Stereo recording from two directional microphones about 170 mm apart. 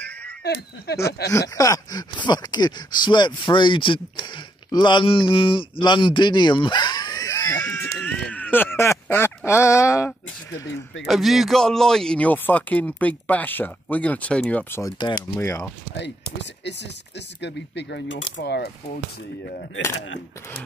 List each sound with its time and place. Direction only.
0.4 s speech: 70° left (ahead or behind)
1.3 s speech: 20° left (ahead or behind)
11.1 s speech: centre (ahead or behind); by 15.6 s 15° left (ahead or behind)
17.4 s speech: 90° left